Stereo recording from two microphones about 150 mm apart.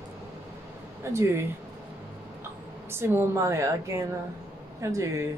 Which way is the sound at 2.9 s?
15° right (ahead or behind).